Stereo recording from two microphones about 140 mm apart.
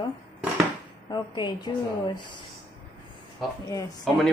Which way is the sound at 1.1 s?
30° left (ahead or behind).